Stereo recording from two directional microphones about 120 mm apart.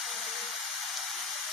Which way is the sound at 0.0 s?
Centre (ahead or behind).